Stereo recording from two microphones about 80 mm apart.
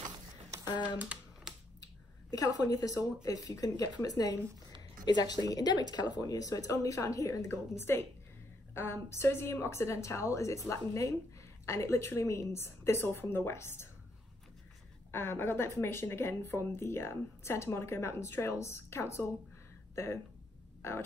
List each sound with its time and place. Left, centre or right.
0.7 s speech: left
1.0 s computer keyboard: centre
2.3 s a woman's voice: left
15.0 s speech: left